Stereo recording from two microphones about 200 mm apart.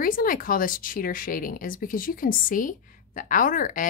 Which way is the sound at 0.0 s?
45° left (ahead or behind).